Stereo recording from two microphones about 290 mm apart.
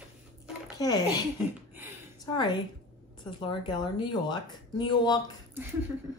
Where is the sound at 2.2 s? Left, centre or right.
Centre.